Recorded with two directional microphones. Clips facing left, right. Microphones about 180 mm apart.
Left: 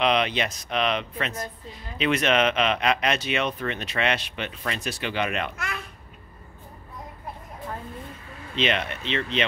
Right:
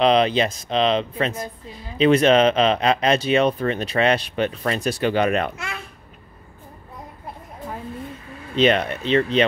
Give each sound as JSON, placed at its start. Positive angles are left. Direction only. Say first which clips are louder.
{"t": 0.0, "sound": "speech", "louder": "right 6 dB", "side_deg": -30}
{"t": 8.5, "sound": "speech", "louder": "right 8 dB", "side_deg": -40}